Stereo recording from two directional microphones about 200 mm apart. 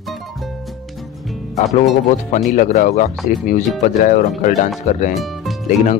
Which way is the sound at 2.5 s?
40° left (ahead or behind).